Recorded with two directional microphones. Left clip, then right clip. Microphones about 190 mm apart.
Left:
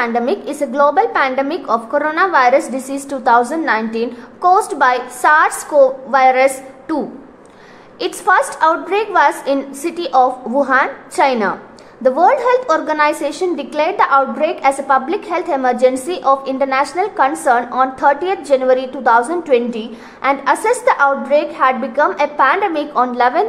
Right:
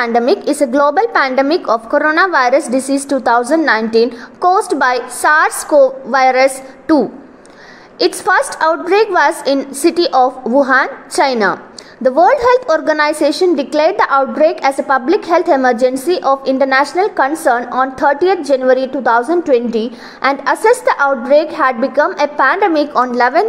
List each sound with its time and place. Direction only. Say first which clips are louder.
0.0 s a woman's voice: right 4 dB; 30° right (ahead or behind)